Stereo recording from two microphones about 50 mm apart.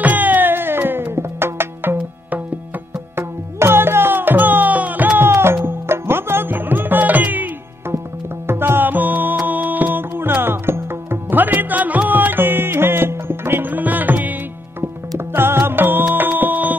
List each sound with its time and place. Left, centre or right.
0.0 s music: right
3.2 s tabla: right
5.2 s music: right
8.5 s music: right
13.7 s music: right
14.8 s music: right